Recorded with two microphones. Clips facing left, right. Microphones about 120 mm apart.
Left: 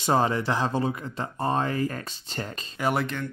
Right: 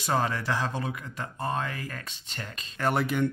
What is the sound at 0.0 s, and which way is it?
Speech, 25° left (ahead or behind).